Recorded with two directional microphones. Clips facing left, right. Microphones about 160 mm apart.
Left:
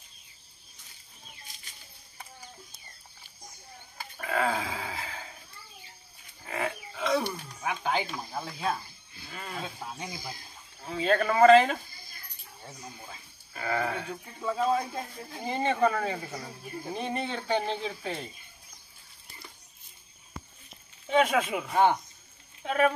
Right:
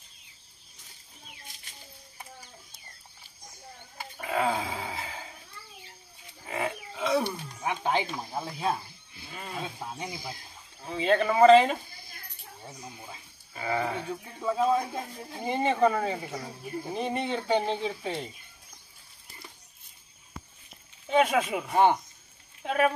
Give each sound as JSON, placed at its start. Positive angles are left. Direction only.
{"t": 4.2, "sound": "a sound", "side_deg": -10}
{"t": 6.4, "sound": "wild animals", "side_deg": -10}
{"t": 7.6, "sound": "speech", "side_deg": -25}
{"t": 15.2, "sound": "speech", "side_deg": -20}
{"t": 17.4, "sound": "speech", "side_deg": -20}
{"t": 21.1, "sound": "speech", "side_deg": -5}